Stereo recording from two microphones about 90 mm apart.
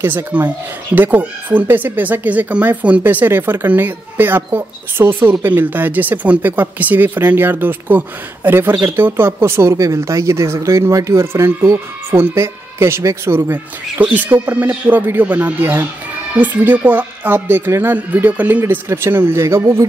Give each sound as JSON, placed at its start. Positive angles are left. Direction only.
{"t": 0.0, "sound": "speech", "side_deg": -20}